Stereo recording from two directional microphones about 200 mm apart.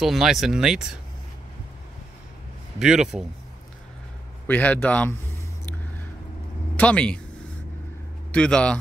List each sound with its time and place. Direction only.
0.0 s speech: centre (ahead or behind)
2.8 s speech: 5° right (ahead or behind)
4.5 s a man's voice: 10° left (ahead or behind)
6.8 s speech: 5° left (ahead or behind)
8.3 s a man's voice: 5° left (ahead or behind)